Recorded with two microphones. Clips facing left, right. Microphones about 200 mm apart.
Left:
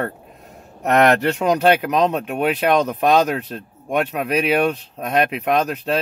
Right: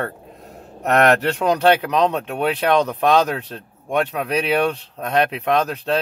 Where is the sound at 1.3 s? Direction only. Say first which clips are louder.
Even; 5° left (ahead or behind).